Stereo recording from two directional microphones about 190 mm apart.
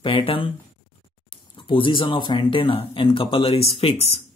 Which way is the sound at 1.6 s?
25° left (ahead or behind).